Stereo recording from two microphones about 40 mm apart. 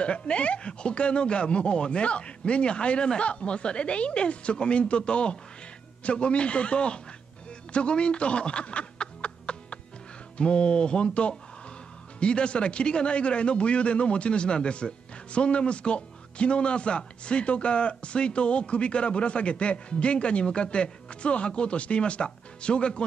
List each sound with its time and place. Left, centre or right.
0.0 s speech: left
7.7 s snicker: left
10.3 s speech: left